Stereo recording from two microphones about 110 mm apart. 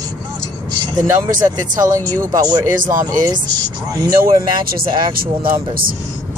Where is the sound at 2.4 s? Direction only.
40° right (ahead or behind).